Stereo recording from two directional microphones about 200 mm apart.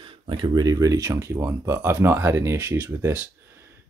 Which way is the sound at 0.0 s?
25° right (ahead or behind).